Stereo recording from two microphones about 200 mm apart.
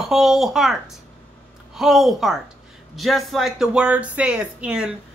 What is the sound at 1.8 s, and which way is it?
Speech, centre (ahead or behind).